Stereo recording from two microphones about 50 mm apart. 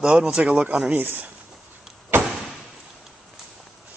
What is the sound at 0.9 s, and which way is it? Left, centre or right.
Speech, right.